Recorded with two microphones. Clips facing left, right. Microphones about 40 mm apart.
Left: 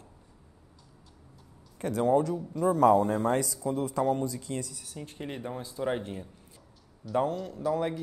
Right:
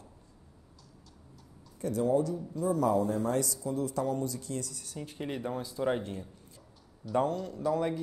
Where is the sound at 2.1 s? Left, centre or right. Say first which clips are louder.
Left 5 dB; left.